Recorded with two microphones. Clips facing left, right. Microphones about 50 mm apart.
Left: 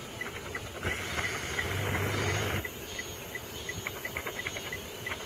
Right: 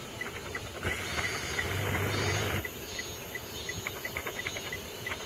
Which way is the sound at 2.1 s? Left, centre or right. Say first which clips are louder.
Even; centre.